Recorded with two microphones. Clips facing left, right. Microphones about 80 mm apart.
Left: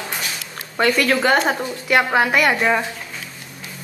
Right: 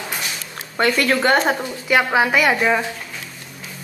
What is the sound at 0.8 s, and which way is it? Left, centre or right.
A woman's voice, centre.